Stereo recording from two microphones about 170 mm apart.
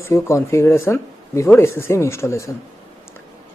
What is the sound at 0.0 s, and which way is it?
Speech, 15° left (ahead or behind).